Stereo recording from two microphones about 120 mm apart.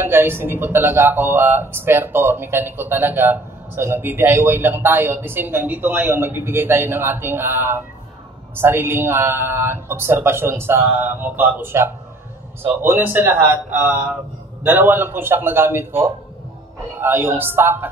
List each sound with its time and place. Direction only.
0.0 s a man's voice: 20° right (ahead or behind)
17.0 s speech: 20° right (ahead or behind)